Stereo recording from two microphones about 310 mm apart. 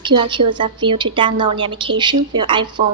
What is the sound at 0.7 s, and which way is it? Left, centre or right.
A woman's voice, centre.